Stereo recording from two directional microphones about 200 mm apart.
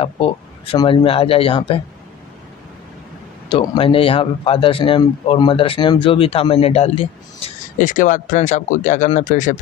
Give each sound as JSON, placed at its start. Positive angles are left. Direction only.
{"t": 0.0, "sound": "speech", "side_deg": 25}
{"t": 3.5, "sound": "speech", "side_deg": 25}